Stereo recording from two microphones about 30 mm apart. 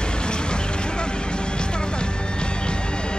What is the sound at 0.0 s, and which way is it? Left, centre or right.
Vehicle, left.